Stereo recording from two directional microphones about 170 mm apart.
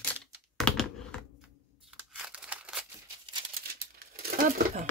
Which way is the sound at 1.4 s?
5° right (ahead or behind).